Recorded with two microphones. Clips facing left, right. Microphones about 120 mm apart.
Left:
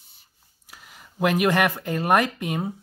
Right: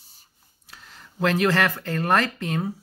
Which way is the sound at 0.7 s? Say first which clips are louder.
Even; 10° left (ahead or behind).